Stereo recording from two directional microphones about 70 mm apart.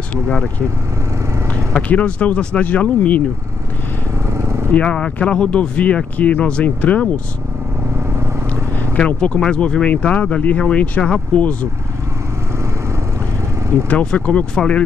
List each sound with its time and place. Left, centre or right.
0.1 s speech: centre
1.8 s speech: centre
4.3 s lawn mower: right
4.7 s speech: centre
8.9 s speech: centre
13.8 s speech: centre